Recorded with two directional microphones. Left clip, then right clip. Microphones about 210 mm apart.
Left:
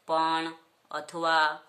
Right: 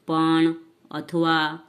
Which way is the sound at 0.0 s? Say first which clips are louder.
Right 6 dB; 15° right (ahead or behind).